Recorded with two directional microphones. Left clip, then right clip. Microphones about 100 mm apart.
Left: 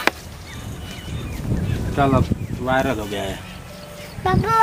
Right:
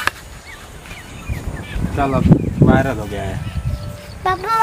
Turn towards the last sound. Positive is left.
turn(degrees=-25)  # may be behind; listen again after turning